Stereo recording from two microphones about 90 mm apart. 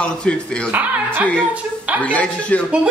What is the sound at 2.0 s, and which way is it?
Speech, 15° left (ahead or behind).